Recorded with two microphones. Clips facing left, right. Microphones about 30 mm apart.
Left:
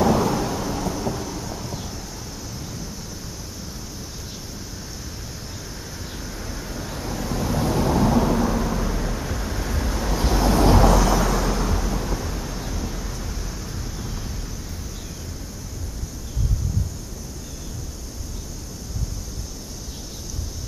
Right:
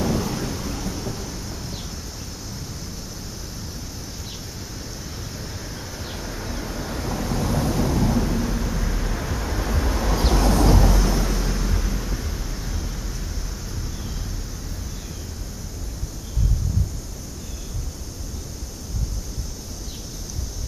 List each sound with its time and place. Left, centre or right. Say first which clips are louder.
0.0 s thunder: left 5 dB; left
0.7 s thunder: left 4 dB; left
6.1 s a sound: right 3 dB; centre
7.9 s thunder: left 3 dB; left
8.3 s vehicle: left 4 dB; left
8.7 s vehicle: left 3 dB; centre
9.2 s vehicle: right 1 dB; centre
10.3 s vehicle: left 2 dB; centre
10.9 s vehicle: left 5 dB; left
11.6 s vehicle: left 3 dB; left
12.5 s vehicle: left 3 dB; centre